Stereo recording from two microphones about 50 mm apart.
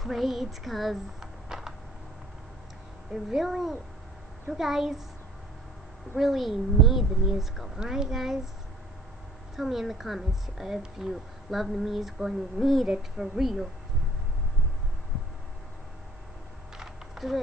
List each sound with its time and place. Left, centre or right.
0.0 s speech: centre
1.2 s music: centre
3.3 s speech: centre
6.1 s a child's voice: centre
9.6 s speech: centre
12.8 s a child's voice: centre
13.4 s speech: centre
16.7 s a sound: centre